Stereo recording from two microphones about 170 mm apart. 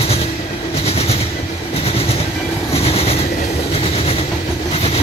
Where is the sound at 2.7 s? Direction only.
35° left (ahead or behind).